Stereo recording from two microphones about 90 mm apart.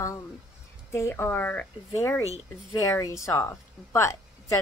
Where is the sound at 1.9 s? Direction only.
30° left (ahead or behind).